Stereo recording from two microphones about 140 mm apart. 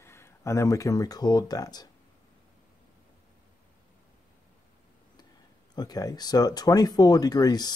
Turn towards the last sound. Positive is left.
turn(degrees=25)  # may be behind; listen again after turning